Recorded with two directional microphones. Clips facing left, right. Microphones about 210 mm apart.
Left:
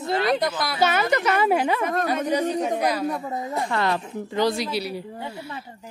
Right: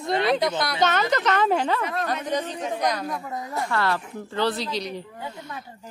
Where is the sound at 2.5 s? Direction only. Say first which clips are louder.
Left 6 dB; 45° left (ahead or behind).